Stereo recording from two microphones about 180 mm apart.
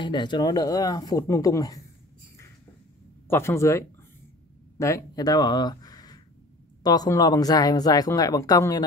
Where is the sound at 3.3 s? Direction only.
15° left (ahead or behind).